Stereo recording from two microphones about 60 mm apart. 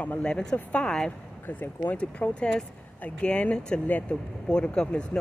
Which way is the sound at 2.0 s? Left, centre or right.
Centre.